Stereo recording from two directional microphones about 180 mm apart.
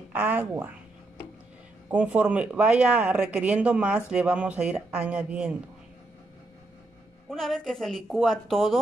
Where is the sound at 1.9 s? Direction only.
10° right (ahead or behind).